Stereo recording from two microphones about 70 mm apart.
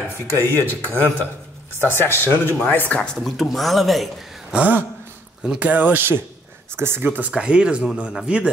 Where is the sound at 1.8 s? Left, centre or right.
Left.